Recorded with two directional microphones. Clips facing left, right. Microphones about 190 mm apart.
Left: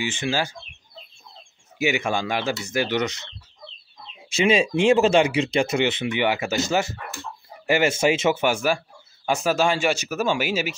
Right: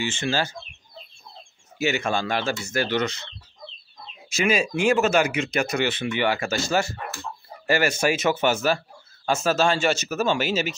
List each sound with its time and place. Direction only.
0.0 s speech: 15° left (ahead or behind)
1.8 s speech: 15° left (ahead or behind)
4.3 s speech: 25° left (ahead or behind); by 10.8 s 10° left (ahead or behind)